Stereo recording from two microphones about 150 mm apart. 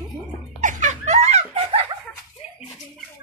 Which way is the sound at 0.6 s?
55° right (ahead or behind).